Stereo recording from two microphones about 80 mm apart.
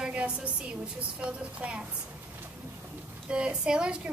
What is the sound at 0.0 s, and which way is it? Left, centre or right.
A woman's voice, centre.